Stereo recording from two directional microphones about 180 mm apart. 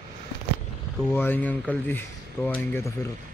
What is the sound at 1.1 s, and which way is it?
Speech, 10° left (ahead or behind).